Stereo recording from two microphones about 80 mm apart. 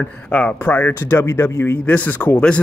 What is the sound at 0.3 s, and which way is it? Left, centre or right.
Speech, centre.